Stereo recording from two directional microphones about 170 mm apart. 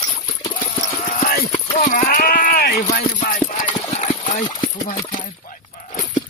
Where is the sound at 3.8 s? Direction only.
45° left (ahead or behind).